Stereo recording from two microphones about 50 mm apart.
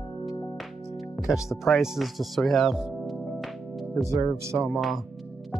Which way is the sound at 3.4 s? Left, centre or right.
Centre.